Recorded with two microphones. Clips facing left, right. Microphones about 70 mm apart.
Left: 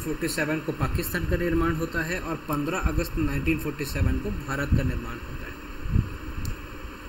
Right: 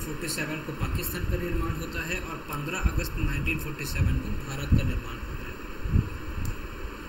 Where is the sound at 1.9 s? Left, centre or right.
Left.